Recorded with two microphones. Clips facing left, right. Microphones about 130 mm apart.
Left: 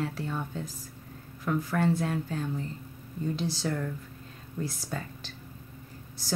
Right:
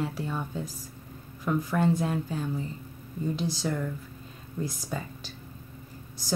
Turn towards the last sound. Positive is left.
turn(degrees=-15)  # may be behind; listen again after turning